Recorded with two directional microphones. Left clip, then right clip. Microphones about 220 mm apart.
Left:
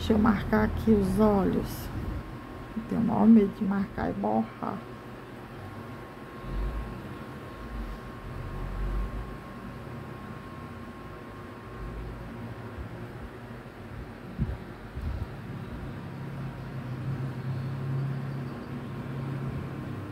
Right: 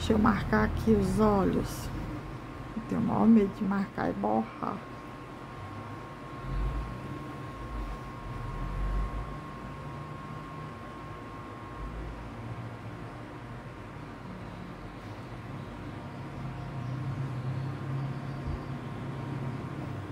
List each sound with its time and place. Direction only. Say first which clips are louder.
0.0 s a woman's voice: left 1 dB; centre (ahead or behind)
3.1 s a woman's voice: left 3 dB; 5° right (ahead or behind)